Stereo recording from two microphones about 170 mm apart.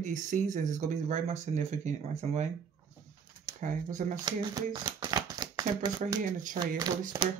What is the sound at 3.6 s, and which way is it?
Speech, 50° right (ahead or behind).